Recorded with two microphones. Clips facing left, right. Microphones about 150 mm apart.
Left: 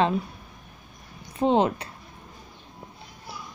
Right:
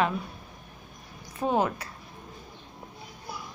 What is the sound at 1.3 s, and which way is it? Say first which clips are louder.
Speech: left 5 dB; 25° left (ahead or behind).